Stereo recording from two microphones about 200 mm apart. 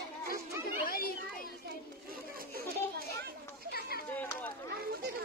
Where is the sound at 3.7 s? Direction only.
50° left (ahead or behind).